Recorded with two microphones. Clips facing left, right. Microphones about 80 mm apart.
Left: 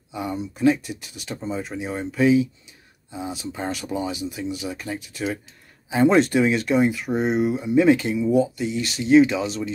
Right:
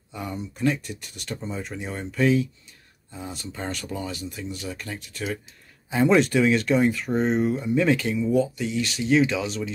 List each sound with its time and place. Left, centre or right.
0.1 s speech: centre
6.0 s speech: left
6.3 s speech: centre